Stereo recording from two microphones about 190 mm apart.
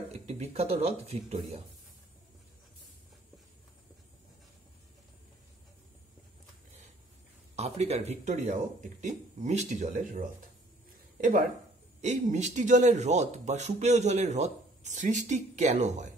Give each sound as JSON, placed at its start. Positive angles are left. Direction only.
{"t": 0.3, "sound": "speech", "side_deg": -35}
{"t": 7.5, "sound": "speech", "side_deg": -35}
{"t": 12.0, "sound": "speech", "side_deg": -35}